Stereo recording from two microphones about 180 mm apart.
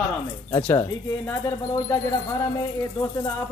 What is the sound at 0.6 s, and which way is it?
Speech, 15° left (ahead or behind).